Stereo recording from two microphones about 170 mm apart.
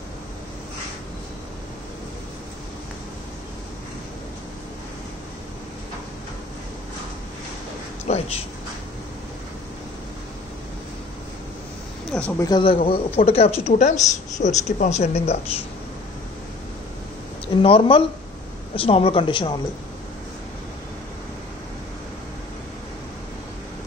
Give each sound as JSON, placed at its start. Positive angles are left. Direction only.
{"t": 8.1, "sound": "a sound", "side_deg": 40}
{"t": 12.1, "sound": "speech", "side_deg": 10}
{"t": 12.4, "sound": "speech", "side_deg": 30}
{"t": 17.6, "sound": "speech", "side_deg": 30}